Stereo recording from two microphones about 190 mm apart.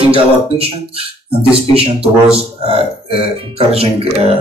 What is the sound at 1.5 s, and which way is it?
Speech, 30° right (ahead or behind).